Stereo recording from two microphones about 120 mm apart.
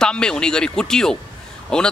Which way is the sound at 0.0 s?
5° left (ahead or behind).